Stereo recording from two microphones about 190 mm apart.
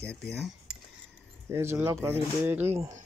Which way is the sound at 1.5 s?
15° right (ahead or behind).